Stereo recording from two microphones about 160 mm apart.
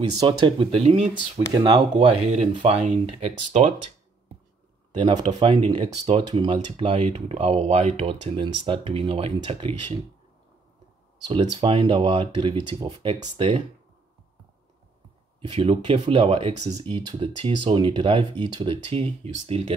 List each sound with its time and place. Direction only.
0.0 s speech: 25° right (ahead or behind)
0.5 s speech: 40° right (ahead or behind)
1.5 s speech: 30° right (ahead or behind)
2.6 s speech: 45° right (ahead or behind)
4.9 s speech: 30° right (ahead or behind)
11.2 s speech: 35° right (ahead or behind)
12.9 s speech: 40° right (ahead or behind)
15.4 s speech: 30° right (ahead or behind)